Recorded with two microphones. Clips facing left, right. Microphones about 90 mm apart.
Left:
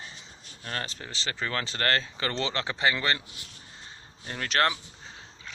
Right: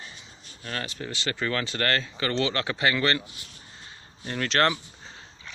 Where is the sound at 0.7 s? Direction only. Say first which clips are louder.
Right 2 dB; 30° left (ahead or behind).